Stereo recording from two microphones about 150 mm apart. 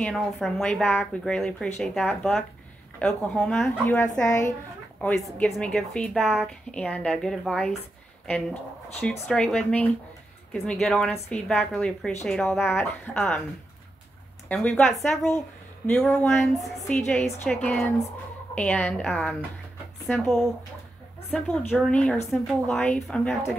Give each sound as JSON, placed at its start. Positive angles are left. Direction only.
{"t": 0.0, "sound": "a woman's voice", "side_deg": 0}
{"t": 4.1, "sound": "speech", "side_deg": 20}
{"t": 5.0, "sound": "a woman's voice", "side_deg": 5}
{"t": 9.3, "sound": "a woman's voice", "side_deg": 5}
{"t": 14.5, "sound": "a woman's voice", "side_deg": 10}